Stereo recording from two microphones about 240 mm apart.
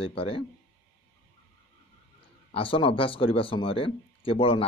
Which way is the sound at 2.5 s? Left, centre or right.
Left.